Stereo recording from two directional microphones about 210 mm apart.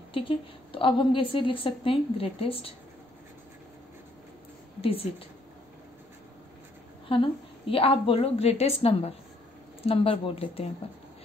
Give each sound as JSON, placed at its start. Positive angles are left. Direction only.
{"t": 0.1, "sound": "a woman's voice", "side_deg": 25}
{"t": 7.1, "sound": "a woman's voice", "side_deg": 25}